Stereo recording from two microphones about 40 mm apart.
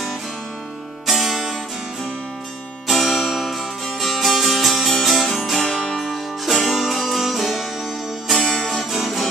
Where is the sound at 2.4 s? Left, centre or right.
Centre.